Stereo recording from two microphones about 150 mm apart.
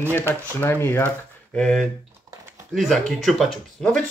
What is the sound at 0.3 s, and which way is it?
Speech, 15° left (ahead or behind).